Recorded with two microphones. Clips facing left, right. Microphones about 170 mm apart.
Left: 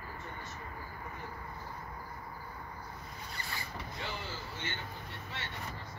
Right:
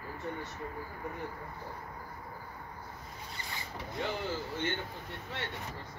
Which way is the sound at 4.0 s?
55° right (ahead or behind).